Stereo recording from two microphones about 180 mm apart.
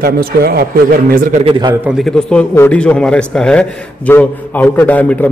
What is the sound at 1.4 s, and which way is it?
Speech, 25° right (ahead or behind).